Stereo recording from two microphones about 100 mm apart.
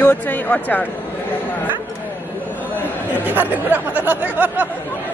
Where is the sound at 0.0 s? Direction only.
20° left (ahead or behind).